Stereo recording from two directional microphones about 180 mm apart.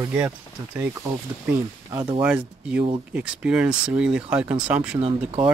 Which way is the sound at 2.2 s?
5° right (ahead or behind).